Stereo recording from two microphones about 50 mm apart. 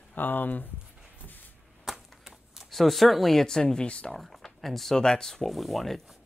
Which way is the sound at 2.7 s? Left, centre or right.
Centre.